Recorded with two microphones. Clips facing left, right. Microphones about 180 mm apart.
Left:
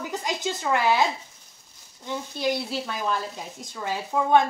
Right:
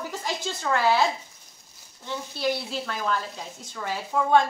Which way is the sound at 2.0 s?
15° left (ahead or behind).